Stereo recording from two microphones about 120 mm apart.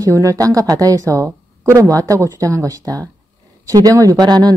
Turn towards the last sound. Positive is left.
turn(degrees=-35)  # may be behind; listen again after turning